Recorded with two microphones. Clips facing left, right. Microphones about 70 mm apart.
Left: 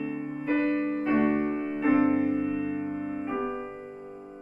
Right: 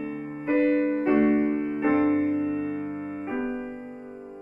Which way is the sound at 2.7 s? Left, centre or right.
Right.